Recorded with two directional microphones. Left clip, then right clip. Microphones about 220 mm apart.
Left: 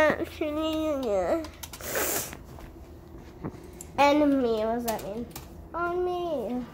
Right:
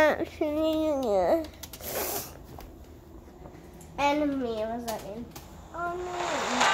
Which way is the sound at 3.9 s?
45° left (ahead or behind).